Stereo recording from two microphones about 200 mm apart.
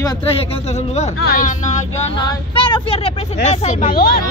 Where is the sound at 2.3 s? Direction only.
25° left (ahead or behind).